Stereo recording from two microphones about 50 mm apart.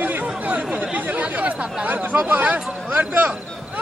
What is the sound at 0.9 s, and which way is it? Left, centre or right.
Chatter, right.